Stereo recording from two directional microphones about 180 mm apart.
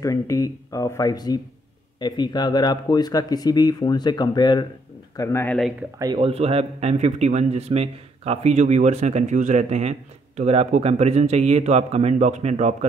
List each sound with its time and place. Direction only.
0.0 s speech: 20° left (ahead or behind)
5.9 s speech: 25° right (ahead or behind)